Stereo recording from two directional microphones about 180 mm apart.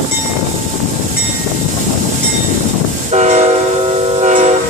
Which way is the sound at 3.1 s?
40° right (ahead or behind).